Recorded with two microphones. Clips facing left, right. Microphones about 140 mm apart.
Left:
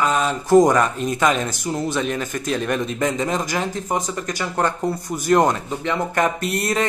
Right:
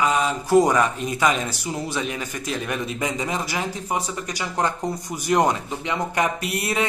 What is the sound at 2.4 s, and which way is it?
Speech, 5° right (ahead or behind).